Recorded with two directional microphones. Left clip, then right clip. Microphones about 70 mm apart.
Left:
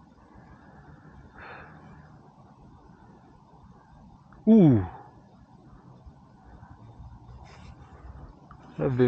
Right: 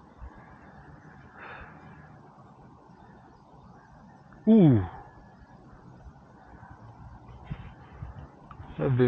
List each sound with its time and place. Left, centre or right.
1.4 s vehicle: left
4.5 s speech: left
8.7 s a sound: left